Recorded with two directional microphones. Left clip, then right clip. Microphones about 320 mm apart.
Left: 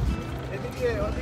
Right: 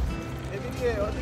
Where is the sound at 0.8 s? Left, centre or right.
Centre.